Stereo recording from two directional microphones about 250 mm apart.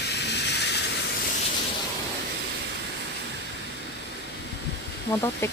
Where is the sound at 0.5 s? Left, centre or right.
Left.